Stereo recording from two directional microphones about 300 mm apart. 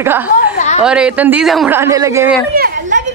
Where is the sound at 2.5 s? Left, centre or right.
Right.